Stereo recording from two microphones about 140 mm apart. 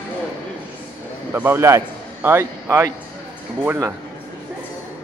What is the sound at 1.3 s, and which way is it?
A man's voice, 15° right (ahead or behind).